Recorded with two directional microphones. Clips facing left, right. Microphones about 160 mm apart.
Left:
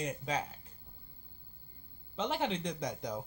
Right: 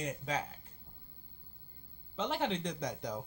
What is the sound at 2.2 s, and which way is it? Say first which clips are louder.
Speech: even; 10° left (ahead or behind).